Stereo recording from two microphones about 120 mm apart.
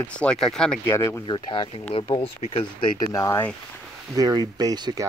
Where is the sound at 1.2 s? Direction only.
40° left (ahead or behind).